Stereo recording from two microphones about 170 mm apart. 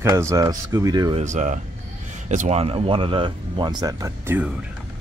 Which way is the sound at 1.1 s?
45° right (ahead or behind).